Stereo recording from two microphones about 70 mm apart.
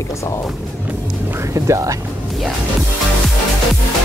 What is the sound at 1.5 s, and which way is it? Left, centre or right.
Speech, right.